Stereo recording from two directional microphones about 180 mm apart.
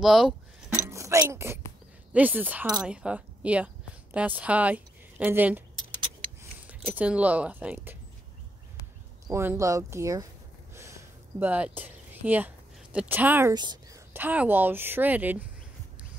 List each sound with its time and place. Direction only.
0.0 s speech: centre (ahead or behind)
0.7 s a sound: 15° right (ahead or behind)
2.1 s speech: 10° right (ahead or behind)
6.7 s speech: 10° right (ahead or behind)
9.3 s speech: 15° right (ahead or behind)
10.7 s a sound: 15° right (ahead or behind)
13.6 s a woman's voice: 20° right (ahead or behind)